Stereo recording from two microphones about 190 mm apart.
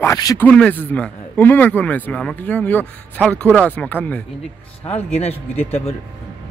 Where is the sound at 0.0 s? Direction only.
15° left (ahead or behind).